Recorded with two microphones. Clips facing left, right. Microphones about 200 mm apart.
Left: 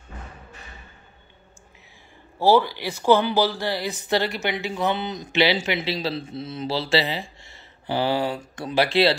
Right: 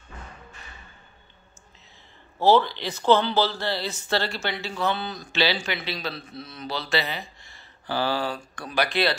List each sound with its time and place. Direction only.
2.3 s speech: 10° left (ahead or behind); by 9.1 s 25° left (ahead or behind)